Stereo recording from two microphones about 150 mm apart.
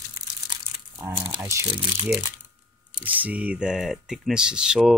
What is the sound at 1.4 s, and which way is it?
Speech, 20° right (ahead or behind).